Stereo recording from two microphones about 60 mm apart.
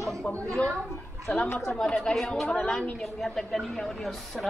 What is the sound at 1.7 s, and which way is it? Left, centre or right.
Speech, centre.